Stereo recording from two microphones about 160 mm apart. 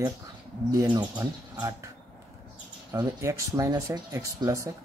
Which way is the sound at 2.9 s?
20° right (ahead or behind).